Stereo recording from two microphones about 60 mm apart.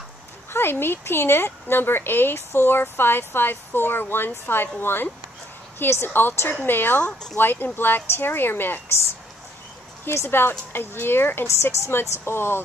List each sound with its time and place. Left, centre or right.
0.5 s a woman's voice: left
7.0 s speech: centre
7.3 s a woman's voice: left
10.0 s a woman's voice: left